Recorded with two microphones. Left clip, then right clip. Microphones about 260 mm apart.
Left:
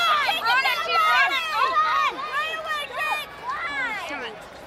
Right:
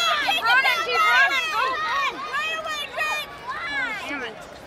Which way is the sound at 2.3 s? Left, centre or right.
Centre.